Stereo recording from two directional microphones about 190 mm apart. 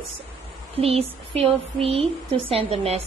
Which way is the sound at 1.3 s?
30° right (ahead or behind).